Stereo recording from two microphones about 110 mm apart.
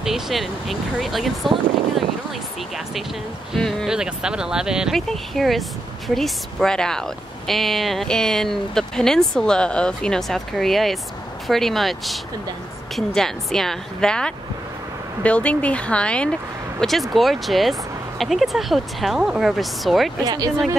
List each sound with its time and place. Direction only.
0.0 s speech: centre (ahead or behind)
3.5 s speech: centre (ahead or behind)
20.2 s speech: 35° right (ahead or behind)